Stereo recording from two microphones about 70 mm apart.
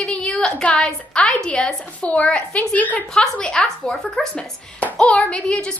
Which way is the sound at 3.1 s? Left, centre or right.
Centre.